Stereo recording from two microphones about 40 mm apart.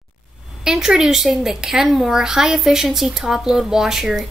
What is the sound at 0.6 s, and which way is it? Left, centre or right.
Speech, centre.